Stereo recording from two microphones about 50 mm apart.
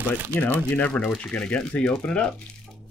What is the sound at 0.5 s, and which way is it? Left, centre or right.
Speech, left.